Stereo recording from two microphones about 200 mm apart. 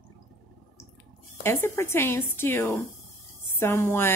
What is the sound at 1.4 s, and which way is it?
A woman's voice, 10° left (ahead or behind).